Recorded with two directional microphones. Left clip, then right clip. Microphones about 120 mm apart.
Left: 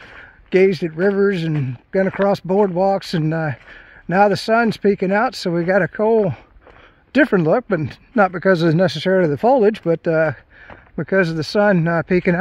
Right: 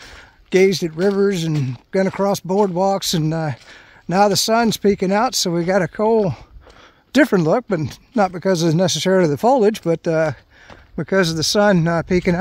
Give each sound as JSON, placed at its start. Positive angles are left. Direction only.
{"t": 0.0, "sound": "speech", "side_deg": -40}
{"t": 1.6, "sound": "speech", "side_deg": -60}
{"t": 2.1, "sound": "speech", "side_deg": -25}
{"t": 7.1, "sound": "speech", "side_deg": -65}
{"t": 7.3, "sound": "speech", "side_deg": -40}
{"t": 8.3, "sound": "speech", "side_deg": -25}
{"t": 9.1, "sound": "speech", "side_deg": -60}
{"t": 9.4, "sound": "speech", "side_deg": -40}